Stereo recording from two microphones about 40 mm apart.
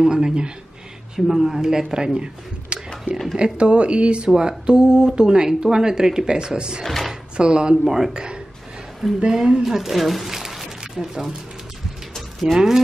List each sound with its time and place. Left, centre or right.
0.0 s speech: centre
1.1 s speech: centre
6.8 s drawer open or close: centre
7.3 s speech: right
7.8 s speech: centre
8.1 s speech: right
9.3 s speech: centre
12.5 s speech: centre